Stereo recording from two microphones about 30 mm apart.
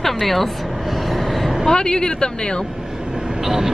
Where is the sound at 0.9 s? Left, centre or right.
Centre.